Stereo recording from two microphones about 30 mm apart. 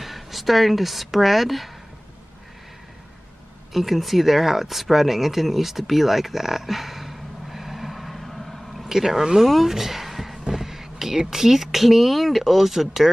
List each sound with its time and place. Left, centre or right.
0.0 s speech: centre
3.7 s speech: centre
8.8 s speech: centre
9.7 s a sound: centre
10.5 s speech: centre